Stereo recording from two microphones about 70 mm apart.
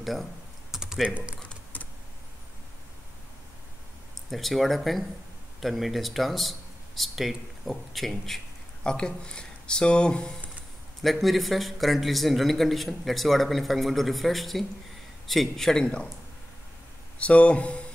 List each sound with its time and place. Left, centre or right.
0.0 s typing: centre
1.0 s speech: centre
1.4 s typing: left
4.3 s a man's voice: centre
8.8 s speech: centre
11.0 s a man's voice: centre
17.2 s speech: centre